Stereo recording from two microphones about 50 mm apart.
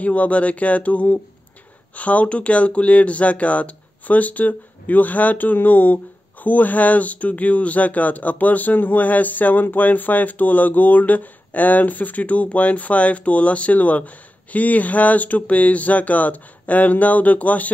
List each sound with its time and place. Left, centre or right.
0.0 s speech: left